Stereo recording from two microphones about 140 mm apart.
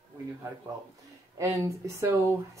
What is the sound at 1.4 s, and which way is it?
Speech, 20° right (ahead or behind).